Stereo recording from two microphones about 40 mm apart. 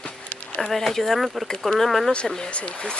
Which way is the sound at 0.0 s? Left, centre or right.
Left.